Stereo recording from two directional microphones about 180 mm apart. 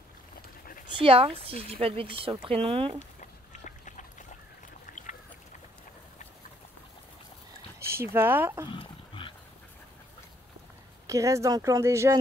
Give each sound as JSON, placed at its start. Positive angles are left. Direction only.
{"t": 0.8, "sound": "speech", "side_deg": -30}
{"t": 3.0, "sound": "duck", "side_deg": 45}
{"t": 7.8, "sound": "speech", "side_deg": -15}
{"t": 8.6, "sound": "dog", "side_deg": 30}
{"t": 11.1, "sound": "speech", "side_deg": -15}